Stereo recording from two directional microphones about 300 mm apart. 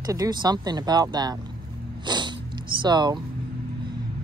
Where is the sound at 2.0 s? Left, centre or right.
Centre.